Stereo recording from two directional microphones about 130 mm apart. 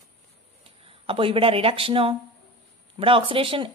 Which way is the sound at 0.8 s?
45° right (ahead or behind).